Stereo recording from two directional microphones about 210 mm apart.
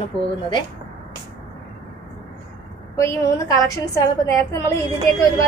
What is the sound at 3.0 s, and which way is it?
A woman's voice, 15° left (ahead or behind).